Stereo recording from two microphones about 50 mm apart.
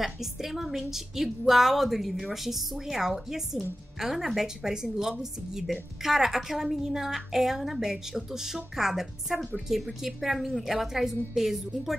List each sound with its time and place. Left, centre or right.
0.0 s a woman's voice: centre